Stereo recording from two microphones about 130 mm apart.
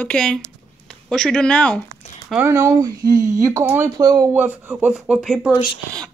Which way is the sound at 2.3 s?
20° right (ahead or behind).